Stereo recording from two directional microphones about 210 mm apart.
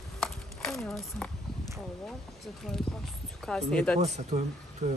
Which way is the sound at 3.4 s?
5° left (ahead or behind).